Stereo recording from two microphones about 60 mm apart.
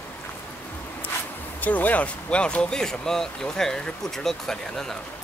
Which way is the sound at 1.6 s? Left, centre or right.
Left.